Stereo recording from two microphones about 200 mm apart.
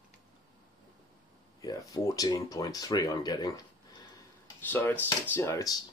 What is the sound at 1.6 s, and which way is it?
Speech, 15° left (ahead or behind).